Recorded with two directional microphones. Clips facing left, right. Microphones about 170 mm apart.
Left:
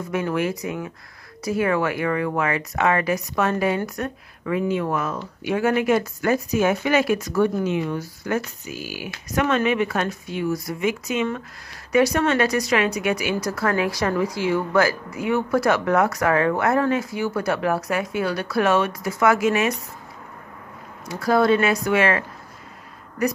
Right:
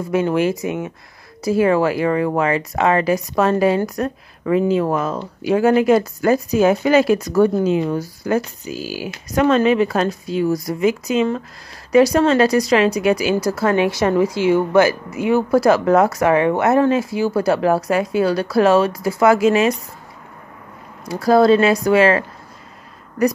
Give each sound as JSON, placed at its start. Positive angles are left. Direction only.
{"t": 0.1, "sound": "speech", "side_deg": -25}
{"t": 21.1, "sound": "speech", "side_deg": -35}